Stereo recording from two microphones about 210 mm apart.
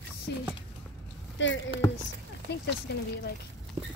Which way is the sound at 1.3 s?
60° left (ahead or behind).